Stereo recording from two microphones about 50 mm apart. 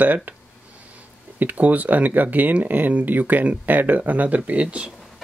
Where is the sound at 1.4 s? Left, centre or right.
Right.